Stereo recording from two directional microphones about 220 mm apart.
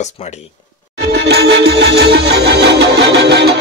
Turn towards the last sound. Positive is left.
turn(degrees=-50)  # may be behind; listen again after turning